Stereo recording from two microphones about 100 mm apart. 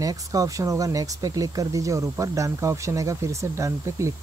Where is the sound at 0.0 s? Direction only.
35° right (ahead or behind).